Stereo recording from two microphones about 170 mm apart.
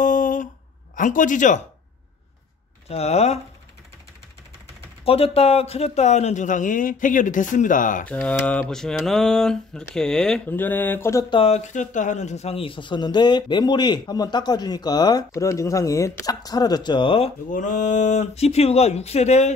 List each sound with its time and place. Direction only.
0.0 s a sound: 50° left (ahead or behind)
0.9 s a man's voice: 50° left (ahead or behind)
2.9 s speech: 40° left (ahead or behind)
5.0 s a man's voice: 35° left (ahead or behind); by 8.1 s 50° left (ahead or behind)
8.1 s speech: 10° left (ahead or behind)
11.3 s speech: 35° left (ahead or behind)
17.5 s speech: 45° left (ahead or behind)